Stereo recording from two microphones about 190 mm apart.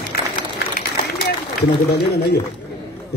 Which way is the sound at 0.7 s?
55° left (ahead or behind).